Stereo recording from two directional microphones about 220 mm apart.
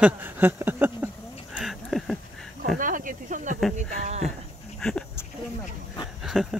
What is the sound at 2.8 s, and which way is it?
Snake, 40° right (ahead or behind).